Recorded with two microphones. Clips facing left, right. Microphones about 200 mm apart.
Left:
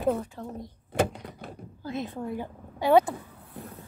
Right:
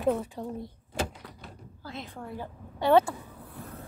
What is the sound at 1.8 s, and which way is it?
A woman's voice, 20° left (ahead or behind).